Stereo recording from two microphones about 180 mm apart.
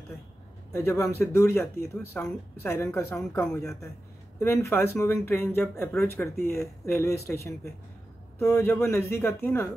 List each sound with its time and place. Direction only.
0.7 s speech: 15° left (ahead or behind)